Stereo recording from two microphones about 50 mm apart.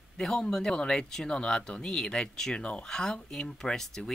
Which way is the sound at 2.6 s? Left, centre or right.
Left.